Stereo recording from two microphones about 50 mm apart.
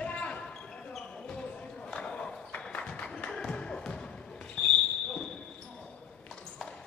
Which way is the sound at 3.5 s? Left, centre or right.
Centre.